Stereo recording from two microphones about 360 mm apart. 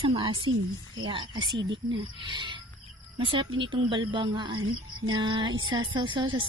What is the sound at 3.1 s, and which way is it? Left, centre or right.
Speech, centre.